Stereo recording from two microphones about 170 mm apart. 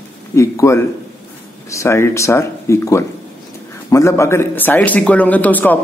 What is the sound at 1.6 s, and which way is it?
Speech, 15° left (ahead or behind).